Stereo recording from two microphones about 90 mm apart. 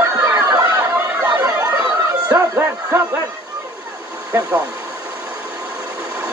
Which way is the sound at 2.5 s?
30° right (ahead or behind).